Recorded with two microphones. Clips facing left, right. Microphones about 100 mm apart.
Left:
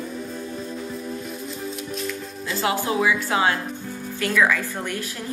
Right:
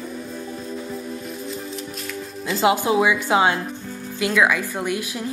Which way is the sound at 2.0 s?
Centre (ahead or behind).